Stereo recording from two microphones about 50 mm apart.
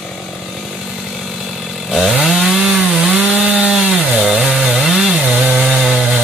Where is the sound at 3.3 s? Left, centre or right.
Right.